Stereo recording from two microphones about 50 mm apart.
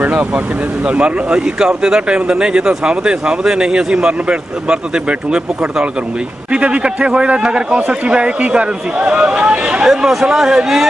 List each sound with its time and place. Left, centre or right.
0.0 s speech: right
0.8 s a man's voice: right
8.0 s a man's voice: right
9.8 s speech: centre